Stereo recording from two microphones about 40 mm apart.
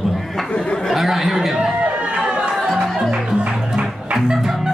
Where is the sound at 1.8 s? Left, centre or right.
Right.